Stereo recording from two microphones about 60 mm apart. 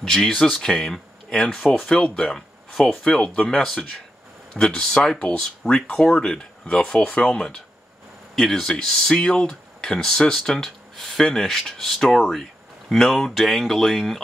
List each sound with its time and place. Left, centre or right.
0.0 s speech: centre